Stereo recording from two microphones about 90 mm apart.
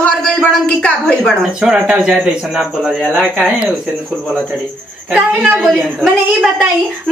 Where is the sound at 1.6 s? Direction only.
10° right (ahead or behind).